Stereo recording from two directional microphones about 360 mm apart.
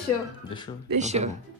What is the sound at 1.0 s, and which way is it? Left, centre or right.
Speech, centre.